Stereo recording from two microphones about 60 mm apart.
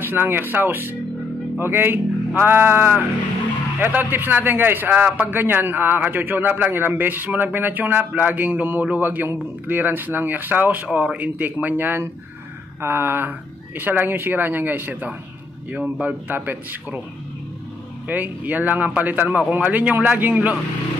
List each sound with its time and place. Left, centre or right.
0.0 s a man's voice: right
18.0 s speech: right